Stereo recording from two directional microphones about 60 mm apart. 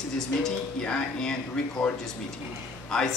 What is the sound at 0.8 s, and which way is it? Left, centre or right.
A man's voice, centre.